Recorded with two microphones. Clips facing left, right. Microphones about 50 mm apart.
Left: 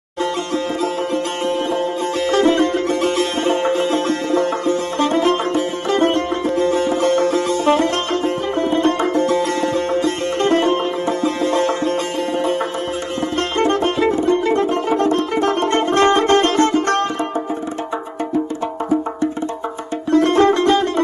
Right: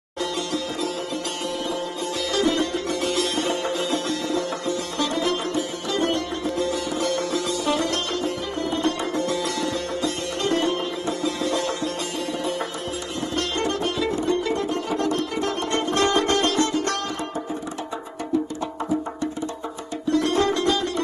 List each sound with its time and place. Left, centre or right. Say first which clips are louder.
1.7 s music: left 8 dB; left
13.4 s music: left 8 dB; left
20.1 s music: left 8 dB; left